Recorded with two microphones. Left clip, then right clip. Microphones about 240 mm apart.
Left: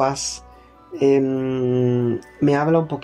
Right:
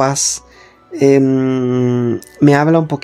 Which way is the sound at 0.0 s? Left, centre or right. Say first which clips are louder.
Right 6 dB; right.